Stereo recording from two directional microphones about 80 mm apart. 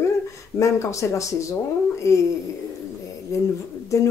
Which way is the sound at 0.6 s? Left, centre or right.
Left.